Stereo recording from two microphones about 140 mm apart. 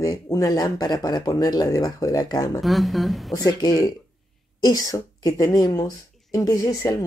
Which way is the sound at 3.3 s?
25° left (ahead or behind).